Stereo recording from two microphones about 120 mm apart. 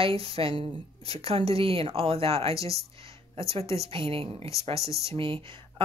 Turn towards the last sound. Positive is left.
turn(degrees=-45)  # may be behind; listen again after turning